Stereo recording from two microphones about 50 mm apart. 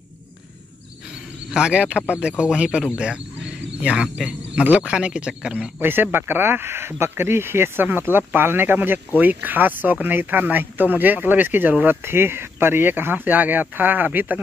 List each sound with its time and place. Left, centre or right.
1.5 s speech: centre
3.0 s cricket: centre
4.6 s speech: right
5.8 s speech: right